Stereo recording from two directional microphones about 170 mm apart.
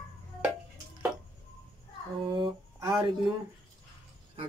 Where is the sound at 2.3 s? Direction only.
30° right (ahead or behind).